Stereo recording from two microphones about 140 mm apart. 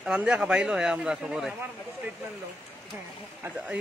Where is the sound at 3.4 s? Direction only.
10° right (ahead or behind).